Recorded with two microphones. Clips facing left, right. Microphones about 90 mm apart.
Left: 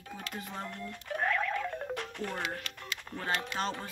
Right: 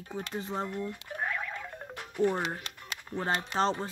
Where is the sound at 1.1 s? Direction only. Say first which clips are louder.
Left 6 dB; 15° right (ahead or behind).